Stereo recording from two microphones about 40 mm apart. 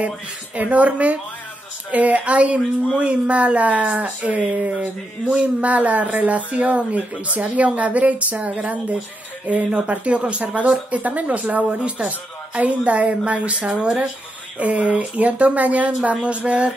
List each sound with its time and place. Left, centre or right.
0.7 s speech: right
9.8 s speech: right